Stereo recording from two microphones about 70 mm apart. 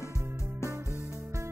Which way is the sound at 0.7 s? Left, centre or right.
Right.